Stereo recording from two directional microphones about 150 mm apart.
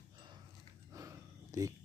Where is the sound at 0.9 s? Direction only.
20° right (ahead or behind).